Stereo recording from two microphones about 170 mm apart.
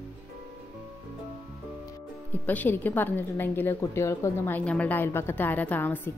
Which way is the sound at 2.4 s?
10° left (ahead or behind).